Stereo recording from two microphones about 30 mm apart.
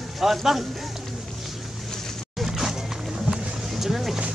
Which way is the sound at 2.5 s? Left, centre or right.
Centre.